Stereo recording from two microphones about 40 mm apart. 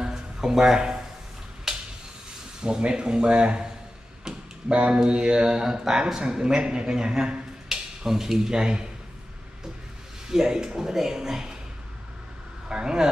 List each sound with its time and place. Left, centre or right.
0.0 s a sound: centre
2.6 s speech: right
10.2 s speech: centre
12.6 s speech: centre